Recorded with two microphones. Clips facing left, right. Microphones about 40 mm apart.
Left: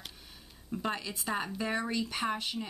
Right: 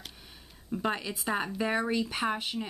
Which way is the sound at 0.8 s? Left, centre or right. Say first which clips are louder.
Right 3 dB; centre.